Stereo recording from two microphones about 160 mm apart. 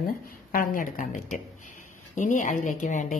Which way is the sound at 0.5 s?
55° left (ahead or behind).